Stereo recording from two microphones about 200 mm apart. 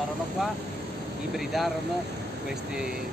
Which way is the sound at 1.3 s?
Centre (ahead or behind).